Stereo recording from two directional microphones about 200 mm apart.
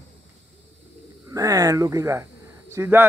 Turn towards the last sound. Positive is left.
turn(degrees=-10)  # may be behind; listen again after turning